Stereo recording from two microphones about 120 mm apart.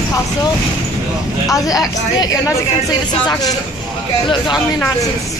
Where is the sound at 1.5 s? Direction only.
30° left (ahead or behind).